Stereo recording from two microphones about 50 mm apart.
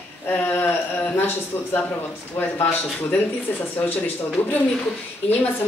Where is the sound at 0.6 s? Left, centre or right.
Left.